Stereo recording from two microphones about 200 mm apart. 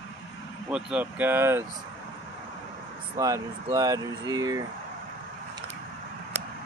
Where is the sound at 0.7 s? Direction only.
5° right (ahead or behind).